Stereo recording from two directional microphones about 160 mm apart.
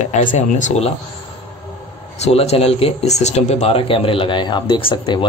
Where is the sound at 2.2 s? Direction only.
40° left (ahead or behind).